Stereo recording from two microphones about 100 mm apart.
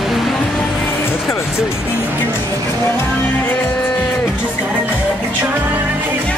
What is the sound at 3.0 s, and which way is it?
Music, 20° left (ahead or behind).